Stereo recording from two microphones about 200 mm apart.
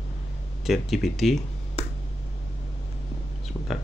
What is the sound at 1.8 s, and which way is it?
Finger snapping, 30° right (ahead or behind).